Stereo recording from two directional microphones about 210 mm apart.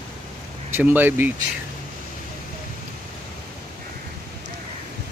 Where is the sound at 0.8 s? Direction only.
10° right (ahead or behind).